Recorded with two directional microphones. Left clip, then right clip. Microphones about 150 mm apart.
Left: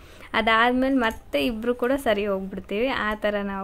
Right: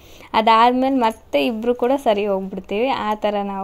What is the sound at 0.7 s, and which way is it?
Speech, 10° right (ahead or behind).